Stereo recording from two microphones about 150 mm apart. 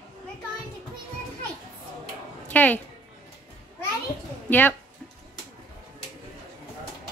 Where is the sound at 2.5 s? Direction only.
10° left (ahead or behind).